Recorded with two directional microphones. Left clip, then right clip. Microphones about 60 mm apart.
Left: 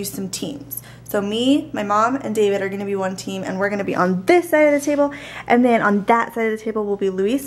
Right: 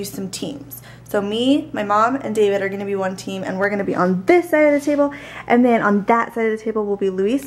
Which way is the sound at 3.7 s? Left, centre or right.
Left.